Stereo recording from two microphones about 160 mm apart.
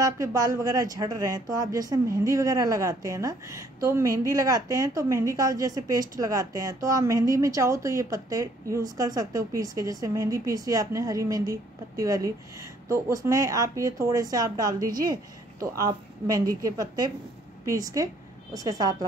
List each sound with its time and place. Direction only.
0.0 s a woman's voice: 20° right (ahead or behind)